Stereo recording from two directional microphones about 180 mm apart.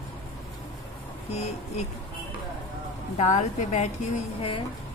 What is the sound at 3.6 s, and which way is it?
A woman's voice, 45° left (ahead or behind).